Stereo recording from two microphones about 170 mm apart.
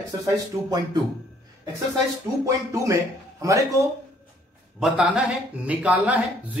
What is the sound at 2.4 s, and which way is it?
A man's voice, 20° right (ahead or behind).